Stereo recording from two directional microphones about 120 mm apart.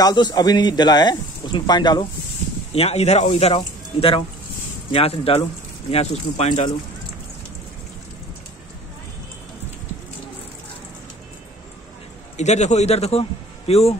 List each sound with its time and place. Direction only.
0.0 s speech: 35° left (ahead or behind)
2.7 s a man's voice: 55° left (ahead or behind)
12.4 s a man's voice: 70° left (ahead or behind); by 13.9 s 55° left (ahead or behind)